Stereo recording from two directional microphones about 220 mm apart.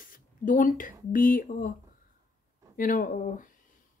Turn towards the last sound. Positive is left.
turn(degrees=35)  # may be behind; listen again after turning